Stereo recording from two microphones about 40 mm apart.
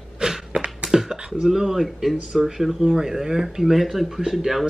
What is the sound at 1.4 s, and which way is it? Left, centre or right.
Speech, centre.